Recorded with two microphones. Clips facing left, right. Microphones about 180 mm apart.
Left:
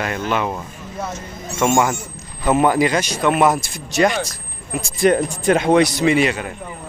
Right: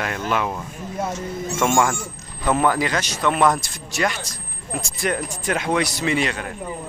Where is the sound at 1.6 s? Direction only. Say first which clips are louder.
Left 3 dB; 5° left (ahead or behind).